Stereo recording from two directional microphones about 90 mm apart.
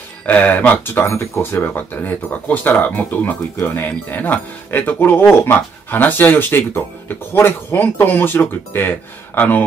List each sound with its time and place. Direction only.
0.3 s speech: 15° left (ahead or behind)